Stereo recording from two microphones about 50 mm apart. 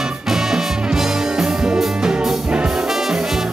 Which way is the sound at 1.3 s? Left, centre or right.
Centre.